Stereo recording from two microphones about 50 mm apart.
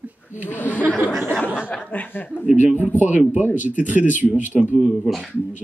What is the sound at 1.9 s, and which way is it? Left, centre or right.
Speech, left.